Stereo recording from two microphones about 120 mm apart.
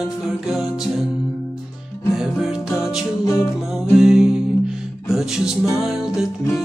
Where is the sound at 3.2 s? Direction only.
30° left (ahead or behind).